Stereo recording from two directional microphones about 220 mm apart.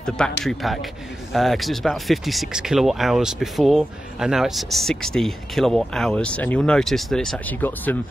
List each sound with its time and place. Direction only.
0.4 s speech: centre (ahead or behind)